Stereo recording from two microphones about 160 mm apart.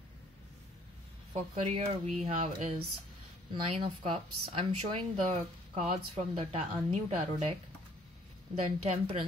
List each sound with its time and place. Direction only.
1.3 s speech: 40° right (ahead or behind)
8.6 s speech: 35° right (ahead or behind)